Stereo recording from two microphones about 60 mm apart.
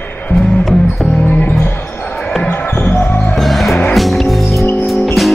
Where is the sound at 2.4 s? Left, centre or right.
Left.